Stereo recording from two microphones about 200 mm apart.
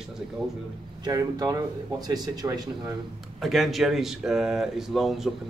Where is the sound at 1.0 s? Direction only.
20° right (ahead or behind).